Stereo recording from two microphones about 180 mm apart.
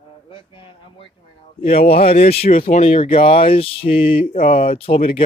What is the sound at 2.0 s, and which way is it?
Speech, 35° left (ahead or behind).